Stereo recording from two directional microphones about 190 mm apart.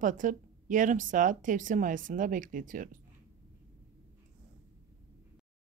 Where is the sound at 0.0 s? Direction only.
45° right (ahead or behind).